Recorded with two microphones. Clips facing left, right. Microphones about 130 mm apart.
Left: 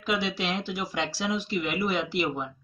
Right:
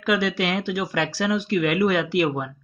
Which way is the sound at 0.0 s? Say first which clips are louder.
Right 6 dB; 65° right (ahead or behind).